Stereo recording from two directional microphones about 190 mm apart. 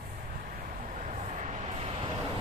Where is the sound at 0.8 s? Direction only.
40° right (ahead or behind).